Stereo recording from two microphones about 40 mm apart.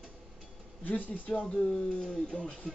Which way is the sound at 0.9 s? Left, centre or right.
Left.